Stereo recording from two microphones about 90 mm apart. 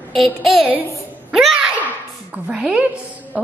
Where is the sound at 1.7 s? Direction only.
15° right (ahead or behind).